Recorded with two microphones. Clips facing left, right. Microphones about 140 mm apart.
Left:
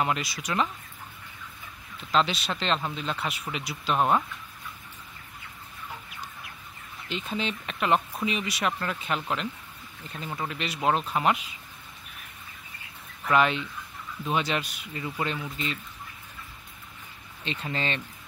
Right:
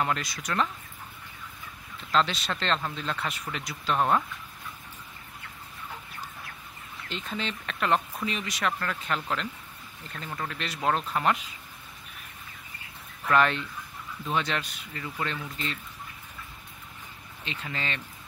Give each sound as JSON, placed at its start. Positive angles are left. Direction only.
{"t": 0.0, "sound": "speech", "side_deg": 10}
{"t": 2.0, "sound": "speech", "side_deg": 5}
{"t": 7.1, "sound": "speech", "side_deg": 10}
{"t": 13.3, "sound": "speech", "side_deg": 5}
{"t": 17.5, "sound": "speech", "side_deg": 25}